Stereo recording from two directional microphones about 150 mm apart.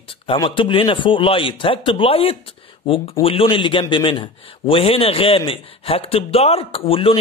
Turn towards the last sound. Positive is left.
turn(degrees=35)  # may be behind; listen again after turning